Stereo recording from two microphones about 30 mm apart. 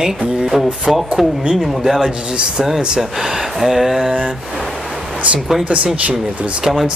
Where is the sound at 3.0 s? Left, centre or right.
Centre.